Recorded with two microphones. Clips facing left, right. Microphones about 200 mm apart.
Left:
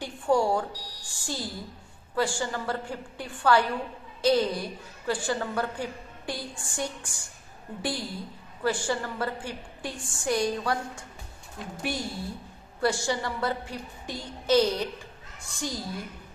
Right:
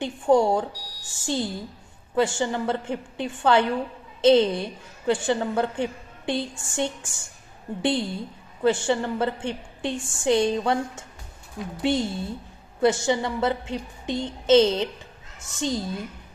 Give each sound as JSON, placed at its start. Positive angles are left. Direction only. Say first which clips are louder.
{"t": 0.0, "sound": "a woman's voice", "louder": "right 5 dB", "side_deg": -20}